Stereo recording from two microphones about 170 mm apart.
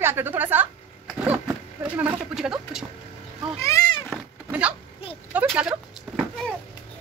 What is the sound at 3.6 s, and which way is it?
Cat, 20° left (ahead or behind).